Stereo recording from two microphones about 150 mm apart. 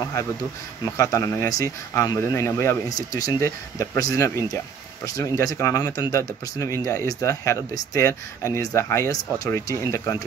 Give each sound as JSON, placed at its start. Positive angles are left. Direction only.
{"t": 0.9, "sound": "speech", "side_deg": 20}